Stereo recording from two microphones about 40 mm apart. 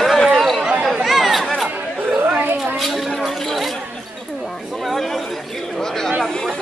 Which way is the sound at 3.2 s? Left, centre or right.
Centre.